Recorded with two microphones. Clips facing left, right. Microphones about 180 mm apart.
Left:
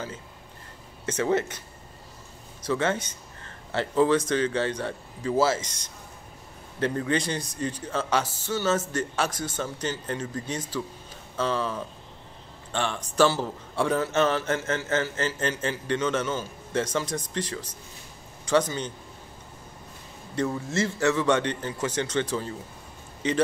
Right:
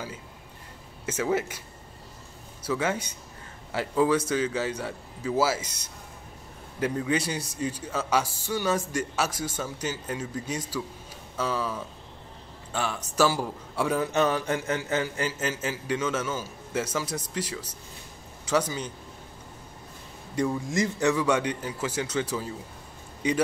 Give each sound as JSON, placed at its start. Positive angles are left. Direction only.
{"t": 1.0, "sound": "a man's voice", "side_deg": -10}
{"t": 2.6, "sound": "a man's voice", "side_deg": -10}
{"t": 20.3, "sound": "a man's voice", "side_deg": -15}